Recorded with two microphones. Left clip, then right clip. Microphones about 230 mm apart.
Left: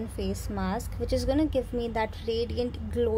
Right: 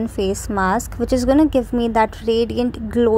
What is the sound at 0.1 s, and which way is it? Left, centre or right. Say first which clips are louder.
A woman's voice: right 13 dB; right.